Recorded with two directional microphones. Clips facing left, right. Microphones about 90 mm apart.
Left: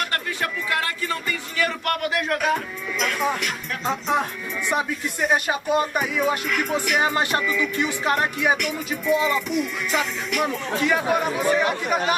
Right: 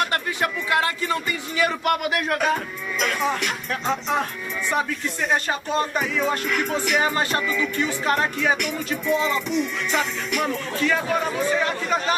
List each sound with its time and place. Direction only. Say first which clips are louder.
0.1 s music: right 2 dB; 20° right (ahead or behind)
1.6 s a sound: right 3 dB; 10° right (ahead or behind)
3.0 s music: right 1 dB; centre (ahead or behind)
4.1 s speech: left 1 dB; 15° left (ahead or behind)
7.0 s speech: left 1 dB; 20° left (ahead or behind)
8.5 s music: right 1 dB; centre (ahead or behind)
10.8 s speech: left 1 dB; 15° left (ahead or behind)